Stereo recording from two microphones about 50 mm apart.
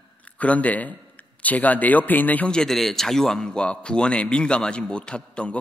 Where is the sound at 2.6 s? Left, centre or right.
Centre.